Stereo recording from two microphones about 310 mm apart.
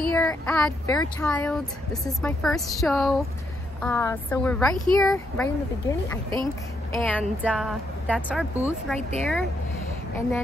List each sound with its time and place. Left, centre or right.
0.1 s a child's voice: centre